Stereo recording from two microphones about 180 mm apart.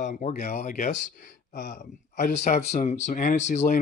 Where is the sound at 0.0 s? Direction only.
45° left (ahead or behind).